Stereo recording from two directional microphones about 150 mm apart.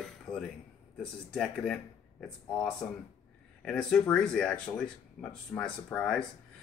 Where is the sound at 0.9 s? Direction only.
5° left (ahead or behind).